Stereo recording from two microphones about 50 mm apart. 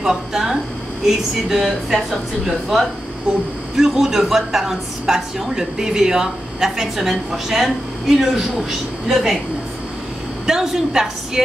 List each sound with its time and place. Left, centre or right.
0.0 s a woman's voice: centre
10.4 s a woman's voice: centre